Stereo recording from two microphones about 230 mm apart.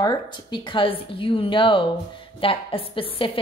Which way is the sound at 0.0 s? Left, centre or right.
Left.